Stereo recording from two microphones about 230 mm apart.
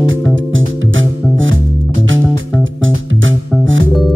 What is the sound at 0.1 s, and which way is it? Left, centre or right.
Music, right.